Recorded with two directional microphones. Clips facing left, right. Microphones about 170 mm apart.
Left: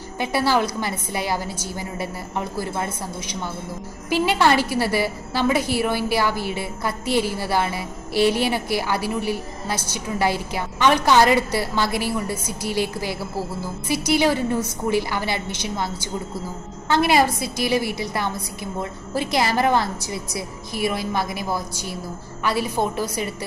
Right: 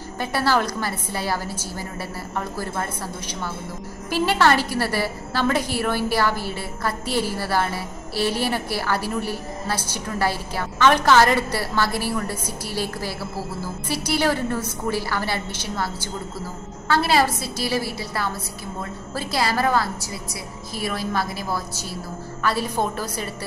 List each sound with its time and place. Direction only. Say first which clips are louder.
0.2 s a woman's voice: left 1 dB; 15° left (ahead or behind)